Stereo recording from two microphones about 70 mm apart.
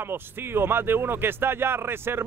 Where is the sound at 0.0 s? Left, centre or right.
Right.